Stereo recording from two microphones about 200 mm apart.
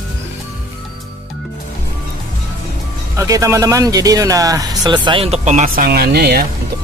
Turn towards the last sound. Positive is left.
turn(degrees=-50)  # may be behind; listen again after turning